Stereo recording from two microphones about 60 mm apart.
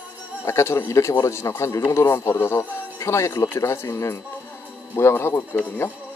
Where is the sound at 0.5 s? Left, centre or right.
Left.